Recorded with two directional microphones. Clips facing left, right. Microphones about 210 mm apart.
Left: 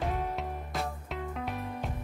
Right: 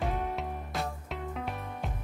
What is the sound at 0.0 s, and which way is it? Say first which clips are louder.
Music: even; centre (ahead or behind).